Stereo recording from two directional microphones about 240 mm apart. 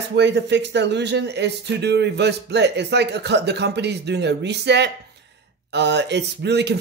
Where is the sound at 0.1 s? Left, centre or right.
Right.